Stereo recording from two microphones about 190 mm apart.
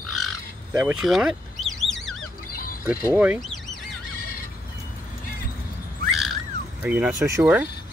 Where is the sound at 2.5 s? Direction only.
50° left (ahead or behind).